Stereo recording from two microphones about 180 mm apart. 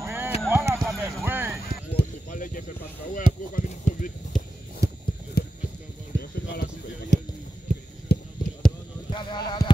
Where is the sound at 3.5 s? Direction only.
45° left (ahead or behind).